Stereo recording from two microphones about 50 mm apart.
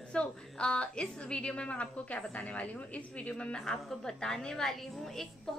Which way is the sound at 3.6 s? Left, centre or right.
Centre.